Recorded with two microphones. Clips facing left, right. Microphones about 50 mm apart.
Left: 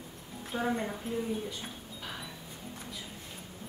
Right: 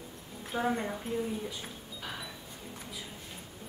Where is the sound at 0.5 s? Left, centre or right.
Centre.